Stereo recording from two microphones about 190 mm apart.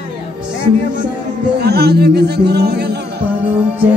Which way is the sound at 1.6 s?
55° right (ahead or behind).